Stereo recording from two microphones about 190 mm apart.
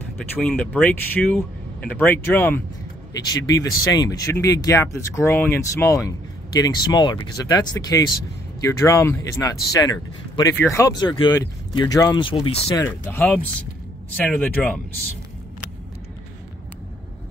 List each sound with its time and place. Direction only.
0.2 s speech: 5° left (ahead or behind)